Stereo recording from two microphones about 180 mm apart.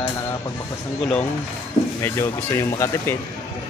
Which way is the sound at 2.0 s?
15° left (ahead or behind).